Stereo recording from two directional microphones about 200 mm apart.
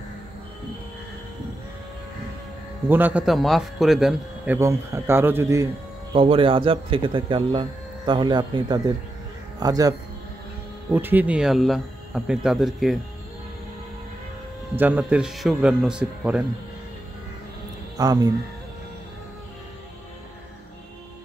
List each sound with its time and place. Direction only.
2.9 s speech: 10° right (ahead or behind)
4.6 s speech: 15° right (ahead or behind)
6.1 s speech: 25° right (ahead or behind); by 13.0 s centre (ahead or behind)
14.8 s speech: 10° right (ahead or behind)
17.9 s speech: 20° right (ahead or behind)